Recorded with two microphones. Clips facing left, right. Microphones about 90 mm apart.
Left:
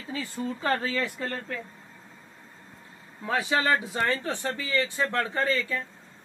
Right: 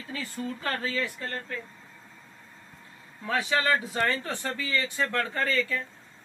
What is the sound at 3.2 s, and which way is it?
Speech, 25° left (ahead or behind).